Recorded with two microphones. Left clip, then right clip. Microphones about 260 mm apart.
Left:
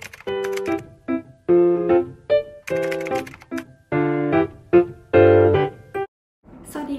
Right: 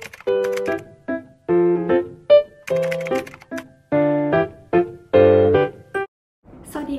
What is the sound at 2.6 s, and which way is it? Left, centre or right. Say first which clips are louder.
Music: right 2 dB; centre.